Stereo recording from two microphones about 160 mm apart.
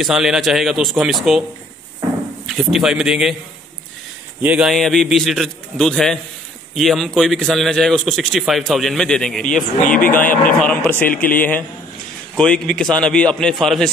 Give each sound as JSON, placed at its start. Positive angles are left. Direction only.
{"t": 0.0, "sound": "a man's voice", "side_deg": -5}
{"t": 2.4, "sound": "a man's voice", "side_deg": 0}
{"t": 4.4, "sound": "a man's voice", "side_deg": -5}
{"t": 9.8, "sound": "speech", "side_deg": 60}
{"t": 10.6, "sound": "a man's voice", "side_deg": 10}